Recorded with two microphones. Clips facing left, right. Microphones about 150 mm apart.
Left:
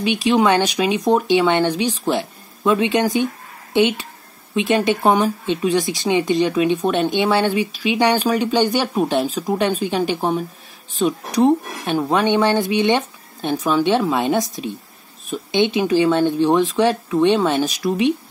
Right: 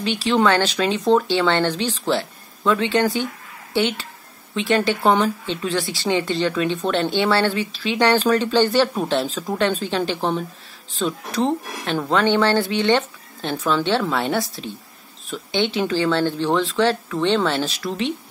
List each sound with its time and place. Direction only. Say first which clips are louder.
0.0 s speech: left 2 dB; 15° left (ahead or behind)